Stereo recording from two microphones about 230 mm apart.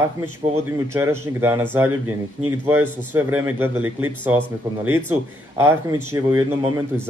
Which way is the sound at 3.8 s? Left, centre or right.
Right.